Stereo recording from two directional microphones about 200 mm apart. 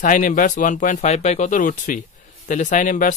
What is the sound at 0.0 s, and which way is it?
Speech, 40° left (ahead or behind).